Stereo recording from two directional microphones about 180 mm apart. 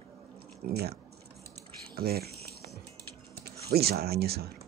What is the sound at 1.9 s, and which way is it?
Music, 60° right (ahead or behind).